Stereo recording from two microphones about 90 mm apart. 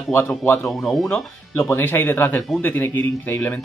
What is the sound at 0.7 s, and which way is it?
Speech, centre (ahead or behind).